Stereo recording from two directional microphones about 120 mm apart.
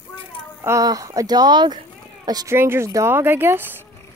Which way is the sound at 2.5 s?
20° right (ahead or behind).